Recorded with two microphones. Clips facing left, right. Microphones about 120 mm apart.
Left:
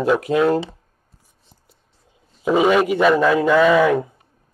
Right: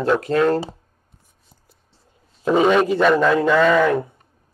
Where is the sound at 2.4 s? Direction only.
5° left (ahead or behind).